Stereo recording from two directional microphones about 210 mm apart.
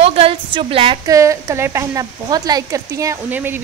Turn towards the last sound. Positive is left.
turn(degrees=-10)  # may be behind; listen again after turning